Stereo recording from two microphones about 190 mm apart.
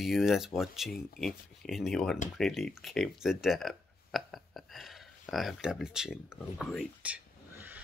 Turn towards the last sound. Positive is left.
turn(degrees=-5)  # may be behind; listen again after turning